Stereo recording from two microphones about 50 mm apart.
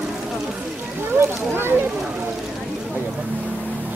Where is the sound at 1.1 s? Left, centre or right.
Right.